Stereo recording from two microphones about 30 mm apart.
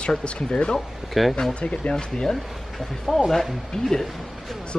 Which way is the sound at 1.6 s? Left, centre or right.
Left.